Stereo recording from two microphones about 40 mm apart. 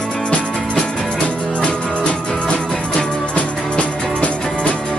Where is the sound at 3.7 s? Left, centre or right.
Left.